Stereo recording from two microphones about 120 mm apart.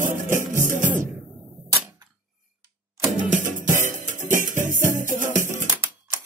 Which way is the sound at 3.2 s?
90° right.